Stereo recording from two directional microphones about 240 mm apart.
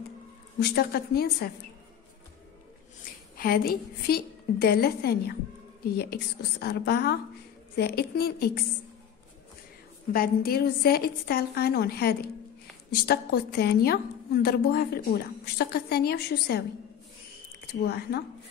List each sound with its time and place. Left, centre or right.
0.6 s a woman's voice: left
3.3 s a woman's voice: left
10.1 s a woman's voice: left
17.8 s a woman's voice: left